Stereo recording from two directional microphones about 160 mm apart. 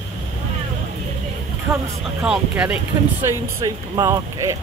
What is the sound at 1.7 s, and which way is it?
Music, 15° right (ahead or behind).